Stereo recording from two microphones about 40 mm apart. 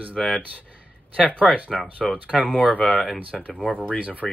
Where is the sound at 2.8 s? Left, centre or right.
Centre.